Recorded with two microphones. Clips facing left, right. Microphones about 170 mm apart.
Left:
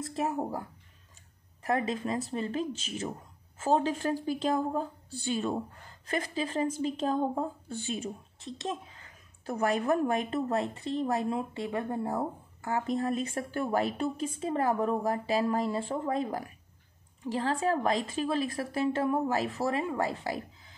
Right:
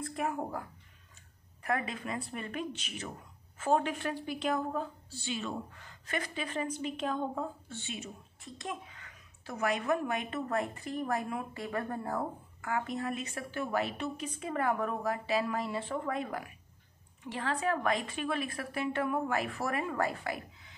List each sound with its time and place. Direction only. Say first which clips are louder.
0.1 s a woman's voice: left 4 dB; 25° left (ahead or behind)
4.0 s a woman's voice: left 5 dB; 40° left (ahead or behind)